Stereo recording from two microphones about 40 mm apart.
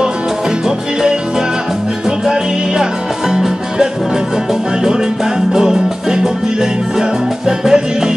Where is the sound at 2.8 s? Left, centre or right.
Centre.